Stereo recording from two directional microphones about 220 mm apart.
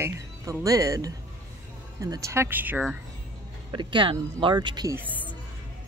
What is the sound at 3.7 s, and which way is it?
Speech, 20° right (ahead or behind).